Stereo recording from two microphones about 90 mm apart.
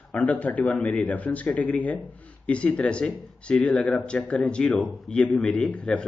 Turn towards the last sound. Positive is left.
turn(degrees=15)  # may be behind; listen again after turning